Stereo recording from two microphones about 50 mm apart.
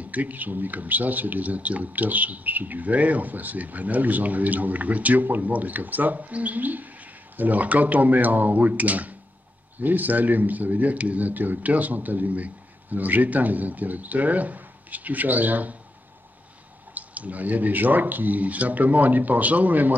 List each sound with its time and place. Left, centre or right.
0.0 s speech: right
16.9 s speech: right